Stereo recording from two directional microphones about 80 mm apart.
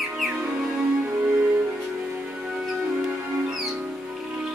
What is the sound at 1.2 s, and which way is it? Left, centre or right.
Music, centre.